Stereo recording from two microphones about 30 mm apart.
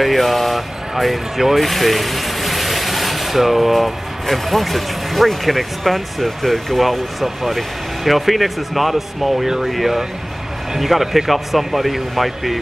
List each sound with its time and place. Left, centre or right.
0.0 s speech: centre
6.8 s speech: centre